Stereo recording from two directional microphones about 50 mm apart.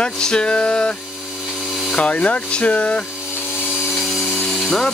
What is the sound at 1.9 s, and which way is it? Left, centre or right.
Speech, left.